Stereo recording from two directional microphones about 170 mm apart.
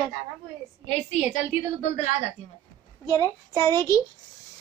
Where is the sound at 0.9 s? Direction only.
40° left (ahead or behind).